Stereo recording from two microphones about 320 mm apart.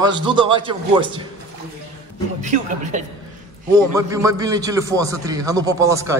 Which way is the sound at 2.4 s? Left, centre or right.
Right.